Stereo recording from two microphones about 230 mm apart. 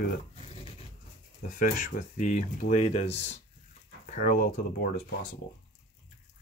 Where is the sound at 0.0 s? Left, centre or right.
Left.